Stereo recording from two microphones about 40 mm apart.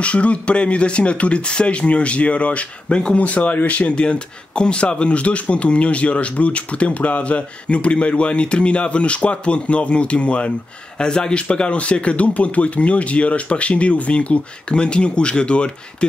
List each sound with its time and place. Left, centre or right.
0.0 s speech: left
3.4 s speech: left